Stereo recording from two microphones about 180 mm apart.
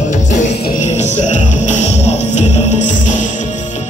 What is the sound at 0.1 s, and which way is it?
Music, 40° left (ahead or behind).